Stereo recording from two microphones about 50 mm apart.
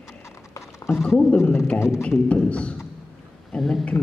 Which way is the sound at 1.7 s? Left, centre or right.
Left.